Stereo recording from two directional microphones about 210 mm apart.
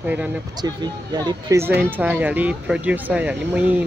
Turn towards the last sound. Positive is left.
turn(degrees=-5)  # may be behind; listen again after turning